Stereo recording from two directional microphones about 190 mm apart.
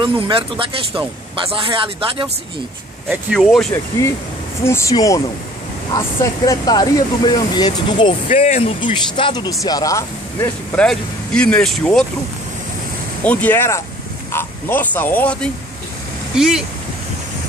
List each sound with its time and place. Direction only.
0.0 s a man's voice: 25° right (ahead or behind)
3.1 s speech: centre (ahead or behind)
4.6 s speech: 15° left (ahead or behind)
8.3 s speech: 40° left (ahead or behind); by 10.9 s 15° left (ahead or behind)
10.9 s speech: 5° left (ahead or behind)
13.2 s speech: 10° left (ahead or behind)
16.3 s speech: 5° right (ahead or behind)